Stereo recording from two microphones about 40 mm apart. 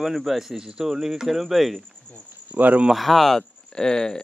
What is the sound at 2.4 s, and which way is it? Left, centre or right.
Speech, right.